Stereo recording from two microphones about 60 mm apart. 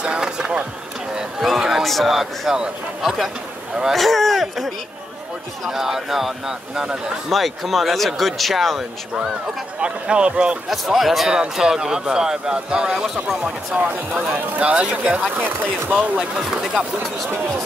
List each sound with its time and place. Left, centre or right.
0.0 s a man's voice: centre
7.2 s a man's voice: centre
9.8 s speech: centre
10.7 s speech: centre
13.7 s speech: right